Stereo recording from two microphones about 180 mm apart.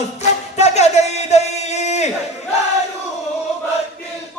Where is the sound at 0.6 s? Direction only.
40° left (ahead or behind).